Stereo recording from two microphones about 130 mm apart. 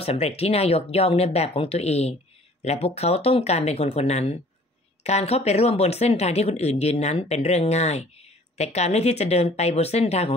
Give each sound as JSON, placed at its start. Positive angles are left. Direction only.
{"t": 0.0, "sound": "speech", "side_deg": 50}